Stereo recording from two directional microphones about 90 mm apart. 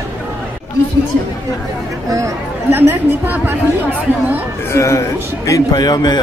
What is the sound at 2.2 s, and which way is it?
Speech, 25° right (ahead or behind).